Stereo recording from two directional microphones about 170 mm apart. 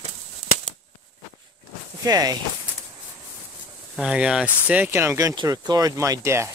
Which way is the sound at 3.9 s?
5° right (ahead or behind).